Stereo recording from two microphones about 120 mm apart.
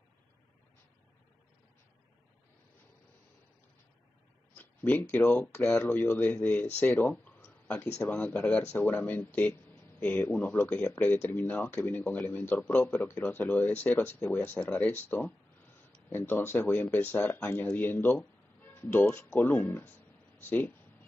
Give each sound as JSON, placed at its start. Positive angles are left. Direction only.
{"t": 4.6, "sound": "speech", "side_deg": 15}